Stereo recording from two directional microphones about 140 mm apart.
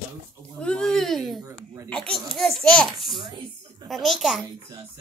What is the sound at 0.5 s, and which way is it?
A child's voice, 5° left (ahead or behind).